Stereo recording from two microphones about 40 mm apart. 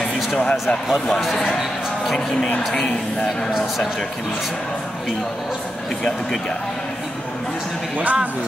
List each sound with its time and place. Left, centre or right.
0.4 s speech: left
3.3 s speech: centre
8.0 s speech: right